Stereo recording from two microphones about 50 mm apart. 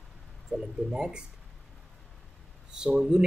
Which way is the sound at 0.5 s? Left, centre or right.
Centre.